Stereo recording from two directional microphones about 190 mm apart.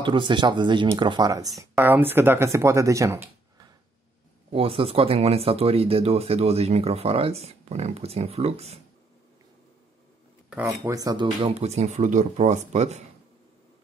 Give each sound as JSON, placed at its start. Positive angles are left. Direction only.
{"t": 0.0, "sound": "speech", "side_deg": -25}
{"t": 4.5, "sound": "speech", "side_deg": -30}
{"t": 10.8, "sound": "speech", "side_deg": -20}
{"t": 11.6, "sound": "speech", "side_deg": -35}